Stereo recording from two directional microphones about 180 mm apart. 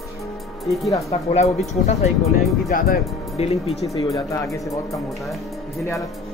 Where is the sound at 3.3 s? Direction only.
35° left (ahead or behind).